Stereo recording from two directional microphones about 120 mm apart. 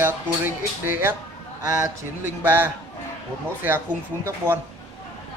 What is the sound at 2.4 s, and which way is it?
Speech, 20° right (ahead or behind).